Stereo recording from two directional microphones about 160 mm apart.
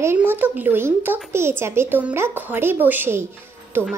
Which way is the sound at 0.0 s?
15° right (ahead or behind).